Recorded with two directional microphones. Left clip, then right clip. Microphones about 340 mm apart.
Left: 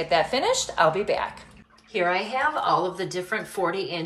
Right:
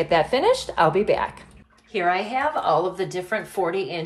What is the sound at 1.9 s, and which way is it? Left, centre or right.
A woman's voice, centre.